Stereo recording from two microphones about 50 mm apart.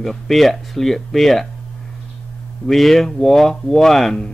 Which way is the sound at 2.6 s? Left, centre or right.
Centre.